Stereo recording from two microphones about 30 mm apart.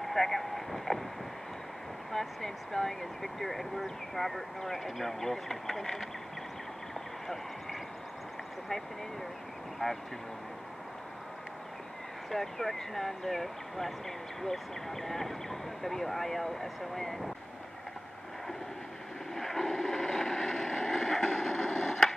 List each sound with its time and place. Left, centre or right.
0.0 s speech: centre
2.1 s speech: centre
9.8 s speech: centre
12.3 s speech: centre
19.3 s vehicle: centre